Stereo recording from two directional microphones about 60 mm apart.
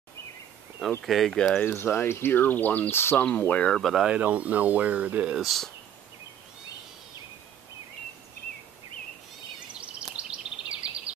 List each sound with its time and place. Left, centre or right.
1.0 s speech: centre
1.7 s speech: left
2.9 s speech: left
3.3 s speech: left
3.7 s speech: centre
4.1 s speech: right
5.3 s speech: centre
9.8 s a sound: centre